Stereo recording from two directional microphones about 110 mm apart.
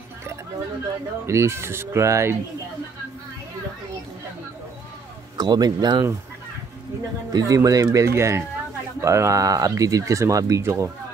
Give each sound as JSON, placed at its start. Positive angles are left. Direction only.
{"t": 1.2, "sound": "speech", "side_deg": -25}
{"t": 5.4, "sound": "speech", "side_deg": -40}
{"t": 7.3, "sound": "speech", "side_deg": -35}